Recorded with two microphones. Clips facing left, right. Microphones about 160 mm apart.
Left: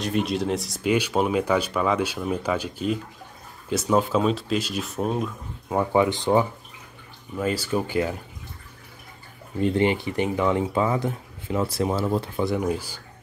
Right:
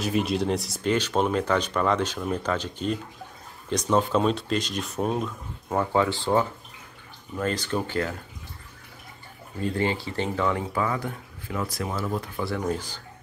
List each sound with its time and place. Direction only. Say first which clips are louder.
0.0 s speech: even; centre (ahead or behind)
9.6 s speech: left 5 dB; 20° left (ahead or behind)